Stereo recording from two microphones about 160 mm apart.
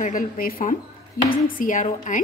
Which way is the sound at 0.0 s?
60° left (ahead or behind).